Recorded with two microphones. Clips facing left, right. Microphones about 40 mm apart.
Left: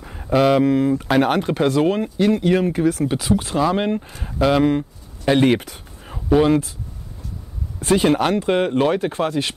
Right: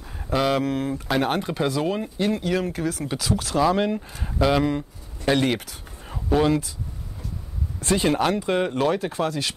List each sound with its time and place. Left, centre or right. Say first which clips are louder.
0.2 s speech: left 7 dB; centre
0.7 s speech: left 8 dB; left
1.5 s speech: left 6 dB; left
2.1 s speech: left 7 dB; left
3.1 s speech: left 5 dB; left
4.1 s speech: left 5 dB; centre
5.4 s speech: left 7 dB; left
6.0 s a sound: left 5 dB; centre
7.8 s speech: left 4 dB; left